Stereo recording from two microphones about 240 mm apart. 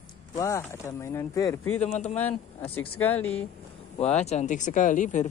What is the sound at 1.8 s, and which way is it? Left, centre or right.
Speech, left.